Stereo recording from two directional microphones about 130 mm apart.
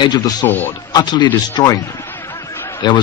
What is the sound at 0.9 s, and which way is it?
Speech, 35° left (ahead or behind).